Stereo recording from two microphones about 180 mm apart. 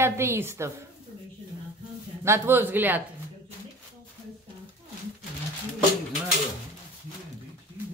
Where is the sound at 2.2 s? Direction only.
15° right (ahead or behind).